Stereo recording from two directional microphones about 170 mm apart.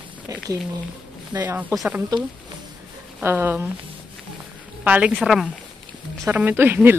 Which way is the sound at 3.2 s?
10° right (ahead or behind).